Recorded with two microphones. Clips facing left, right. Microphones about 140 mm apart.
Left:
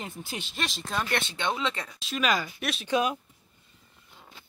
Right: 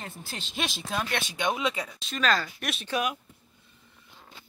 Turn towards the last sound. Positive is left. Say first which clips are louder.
# left 3 dB
turn(degrees=20)  # may be behind; listen again after turning